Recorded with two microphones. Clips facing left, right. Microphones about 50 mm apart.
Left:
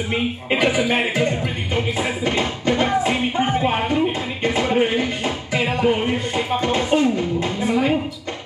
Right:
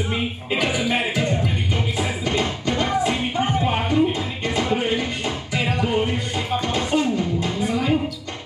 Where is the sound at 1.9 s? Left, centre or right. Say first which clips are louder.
Left 2 dB; left.